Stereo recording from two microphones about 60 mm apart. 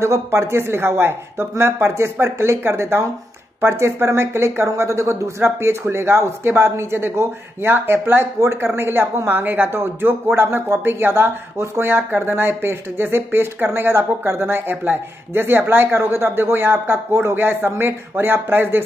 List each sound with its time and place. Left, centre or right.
0.0 s speech: right